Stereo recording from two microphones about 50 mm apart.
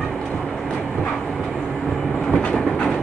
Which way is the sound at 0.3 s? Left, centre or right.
Centre.